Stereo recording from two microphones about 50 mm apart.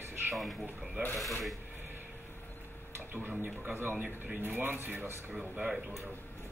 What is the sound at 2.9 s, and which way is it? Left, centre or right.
Speech, right.